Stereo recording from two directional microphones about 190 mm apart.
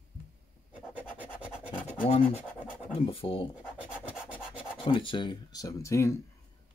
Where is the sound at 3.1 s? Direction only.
30° left (ahead or behind).